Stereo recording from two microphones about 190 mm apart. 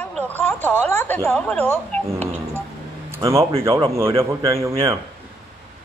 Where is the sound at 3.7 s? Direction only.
30° right (ahead or behind).